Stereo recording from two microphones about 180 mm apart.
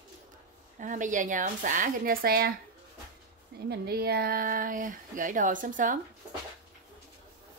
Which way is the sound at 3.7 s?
60° right (ahead or behind).